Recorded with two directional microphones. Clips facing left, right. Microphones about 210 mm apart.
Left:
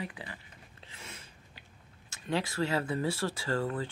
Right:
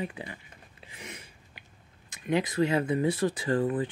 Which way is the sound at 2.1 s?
20° right (ahead or behind).